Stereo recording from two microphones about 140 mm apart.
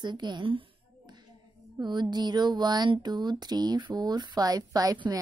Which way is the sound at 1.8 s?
30° right (ahead or behind).